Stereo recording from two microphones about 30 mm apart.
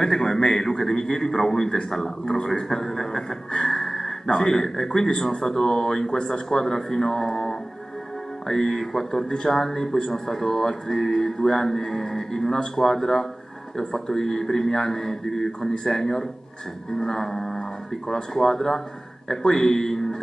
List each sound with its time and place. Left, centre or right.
0.0 s a man's voice: centre